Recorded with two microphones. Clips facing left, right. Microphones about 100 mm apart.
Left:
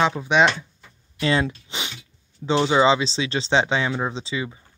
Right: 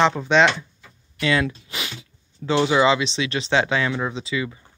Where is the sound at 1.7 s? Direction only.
25° left (ahead or behind).